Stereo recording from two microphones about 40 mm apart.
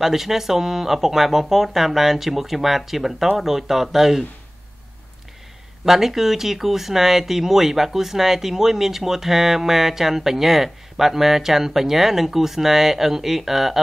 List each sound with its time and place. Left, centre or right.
0.0 s speech: centre
5.9 s speech: centre